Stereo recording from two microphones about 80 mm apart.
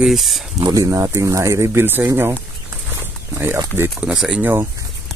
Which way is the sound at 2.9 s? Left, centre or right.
Right.